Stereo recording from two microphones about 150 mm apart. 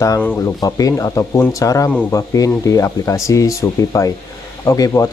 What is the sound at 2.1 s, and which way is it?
Speech, 20° left (ahead or behind).